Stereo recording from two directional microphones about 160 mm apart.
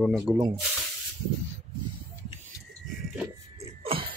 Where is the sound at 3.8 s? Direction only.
35° right (ahead or behind).